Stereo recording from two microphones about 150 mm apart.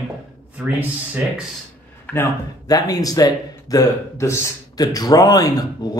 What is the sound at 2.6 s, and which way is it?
Speech, 25° left (ahead or behind).